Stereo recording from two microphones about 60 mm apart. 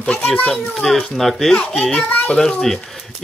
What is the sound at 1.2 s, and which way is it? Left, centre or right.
Speech, centre.